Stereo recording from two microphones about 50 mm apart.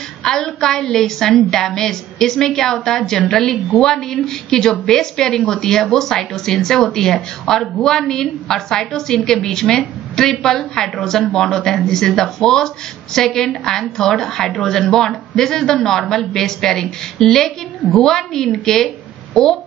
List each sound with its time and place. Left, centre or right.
0.2 s a woman's voice: centre